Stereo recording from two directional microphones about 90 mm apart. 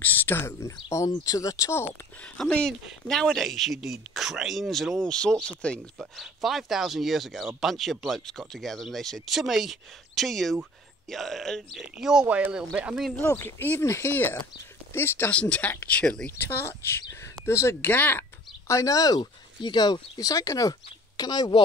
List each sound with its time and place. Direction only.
0.0 s speech: 25° left (ahead or behind)
2.1 s speech: 15° left (ahead or behind)
5.9 s speech: centre (ahead or behind)
11.9 s speech: 5° right (ahead or behind)
13.4 s speech: 25° left (ahead or behind)
15.3 s speech: 15° left (ahead or behind)
16.3 s speech: 25° left (ahead or behind)
18.7 s speech: 40° left (ahead or behind)
19.6 s speech: 55° left (ahead or behind); by 20.7 s 40° left (ahead or behind)
21.2 s speech: 50° left (ahead or behind)